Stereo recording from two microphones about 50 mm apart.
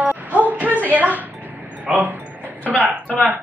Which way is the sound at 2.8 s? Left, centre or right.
Right.